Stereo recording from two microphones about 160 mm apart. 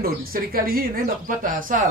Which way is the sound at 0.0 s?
65° right (ahead or behind).